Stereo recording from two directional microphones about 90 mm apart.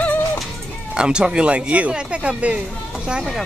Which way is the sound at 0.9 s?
10° right (ahead or behind).